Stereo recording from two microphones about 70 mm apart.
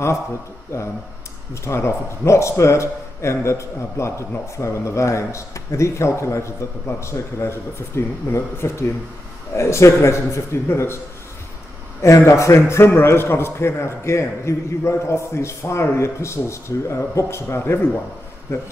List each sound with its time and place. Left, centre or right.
0.7 s a man's voice: left
12.0 s a man's voice: left